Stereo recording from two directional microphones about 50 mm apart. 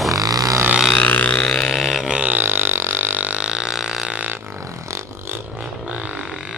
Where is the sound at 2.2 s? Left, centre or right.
Right.